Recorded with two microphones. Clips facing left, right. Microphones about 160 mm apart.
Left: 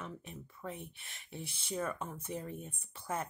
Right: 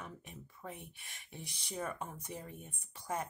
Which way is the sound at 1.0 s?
15° right (ahead or behind).